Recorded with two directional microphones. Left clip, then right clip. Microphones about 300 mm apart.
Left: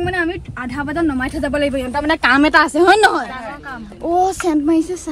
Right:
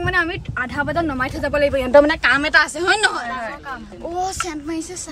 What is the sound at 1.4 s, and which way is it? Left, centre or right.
A woman's voice, centre.